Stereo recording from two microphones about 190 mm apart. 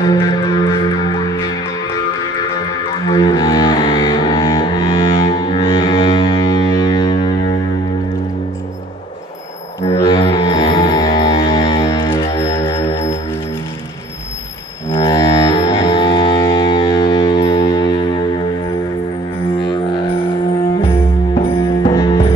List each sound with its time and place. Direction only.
0.0 s music: 20° left (ahead or behind)
3.1 s music: 20° left (ahead or behind)
10.0 s music: 25° left (ahead or behind)
14.9 s music: 25° left (ahead or behind)
21.4 s music: 25° left (ahead or behind)